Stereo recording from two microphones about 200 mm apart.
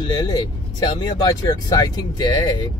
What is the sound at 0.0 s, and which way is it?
Speech, 20° left (ahead or behind).